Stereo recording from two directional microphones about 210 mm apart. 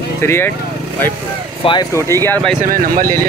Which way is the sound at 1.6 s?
20° left (ahead or behind).